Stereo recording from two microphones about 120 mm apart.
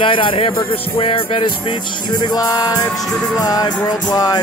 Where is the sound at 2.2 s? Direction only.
35° left (ahead or behind).